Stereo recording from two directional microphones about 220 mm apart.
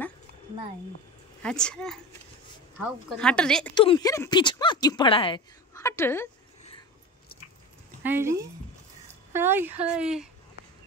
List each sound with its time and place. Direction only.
1.4 s speech: 5° left (ahead or behind)
3.7 s speech: 20° left (ahead or behind)
5.8 s a woman's voice: 10° left (ahead or behind)
8.0 s speech: 10° right (ahead or behind)